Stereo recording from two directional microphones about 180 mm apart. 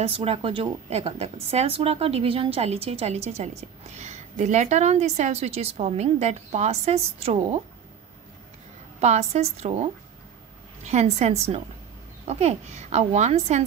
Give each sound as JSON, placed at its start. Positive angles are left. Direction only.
{"t": 0.0, "sound": "a woman's voice", "side_deg": -30}
{"t": 9.0, "sound": "a woman's voice", "side_deg": -40}